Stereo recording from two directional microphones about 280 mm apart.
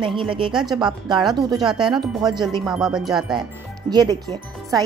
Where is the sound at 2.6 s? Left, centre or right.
Centre.